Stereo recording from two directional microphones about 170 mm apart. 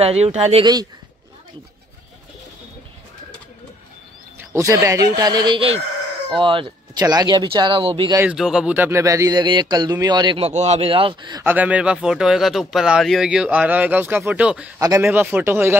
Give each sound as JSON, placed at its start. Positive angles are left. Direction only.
{"t": 0.0, "sound": "speech", "side_deg": -40}
{"t": 4.6, "sound": "speech", "side_deg": -20}
{"t": 8.3, "sound": "speech", "side_deg": -5}
{"t": 11.4, "sound": "speech", "side_deg": -10}
{"t": 14.8, "sound": "speech", "side_deg": -20}